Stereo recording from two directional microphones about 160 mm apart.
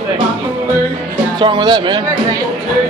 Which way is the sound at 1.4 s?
30° right (ahead or behind).